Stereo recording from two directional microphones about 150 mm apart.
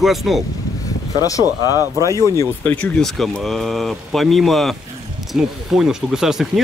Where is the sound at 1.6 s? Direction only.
15° right (ahead or behind).